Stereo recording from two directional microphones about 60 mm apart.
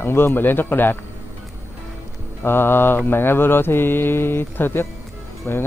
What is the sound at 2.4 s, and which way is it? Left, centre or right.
Mantra, left.